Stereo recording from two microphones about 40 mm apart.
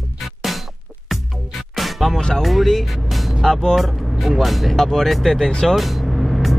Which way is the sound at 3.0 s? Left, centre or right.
Centre.